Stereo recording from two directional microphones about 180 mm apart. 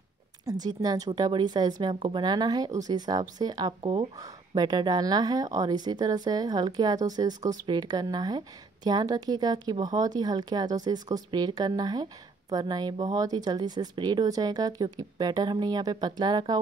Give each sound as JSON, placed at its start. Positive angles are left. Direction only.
{"t": 0.5, "sound": "speech", "side_deg": -20}